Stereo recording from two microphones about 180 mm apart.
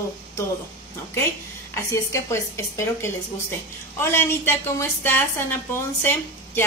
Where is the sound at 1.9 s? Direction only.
15° left (ahead or behind).